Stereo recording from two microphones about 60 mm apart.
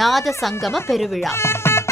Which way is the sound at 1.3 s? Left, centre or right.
Left.